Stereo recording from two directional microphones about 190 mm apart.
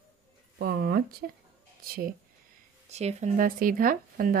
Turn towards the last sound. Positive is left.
turn(degrees=-45)  # may be behind; listen again after turning